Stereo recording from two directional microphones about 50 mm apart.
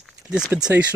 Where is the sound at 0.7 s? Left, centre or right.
Right.